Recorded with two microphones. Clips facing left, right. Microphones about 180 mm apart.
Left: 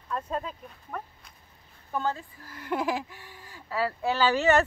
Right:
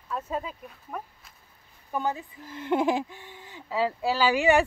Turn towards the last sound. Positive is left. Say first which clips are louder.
# right 1 dB
turn(degrees=-10)  # may be behind; listen again after turning